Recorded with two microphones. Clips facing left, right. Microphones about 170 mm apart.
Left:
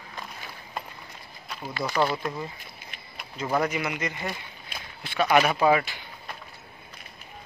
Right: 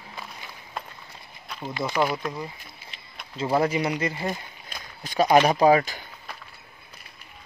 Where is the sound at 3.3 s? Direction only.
30° right (ahead or behind).